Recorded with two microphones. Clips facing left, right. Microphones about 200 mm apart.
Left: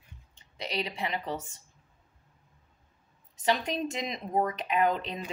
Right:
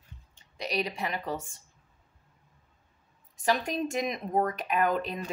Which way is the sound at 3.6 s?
20° left (ahead or behind).